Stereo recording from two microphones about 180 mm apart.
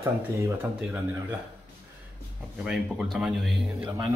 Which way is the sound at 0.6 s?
15° right (ahead or behind).